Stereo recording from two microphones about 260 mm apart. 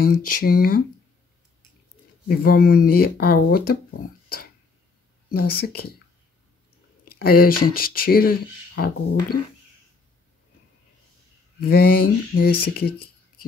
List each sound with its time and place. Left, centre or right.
0.0 s speech: left
2.2 s speech: left
7.1 s speech: left
11.6 s speech: left